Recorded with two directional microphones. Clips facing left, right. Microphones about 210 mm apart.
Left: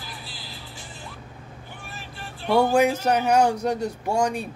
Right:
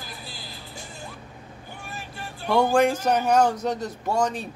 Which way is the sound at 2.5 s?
5° left (ahead or behind).